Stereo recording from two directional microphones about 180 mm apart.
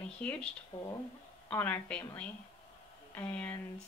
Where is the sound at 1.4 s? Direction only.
10° left (ahead or behind).